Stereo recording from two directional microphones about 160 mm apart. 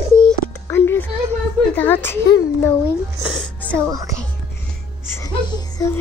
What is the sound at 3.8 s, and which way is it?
Speech, 20° right (ahead or behind).